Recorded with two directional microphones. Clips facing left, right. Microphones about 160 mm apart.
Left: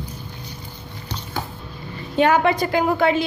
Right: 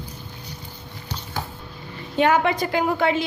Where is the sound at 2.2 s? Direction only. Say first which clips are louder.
Left 2 dB; 40° left (ahead or behind).